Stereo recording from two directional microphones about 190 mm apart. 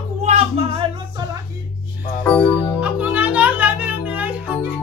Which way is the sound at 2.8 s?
5° right (ahead or behind).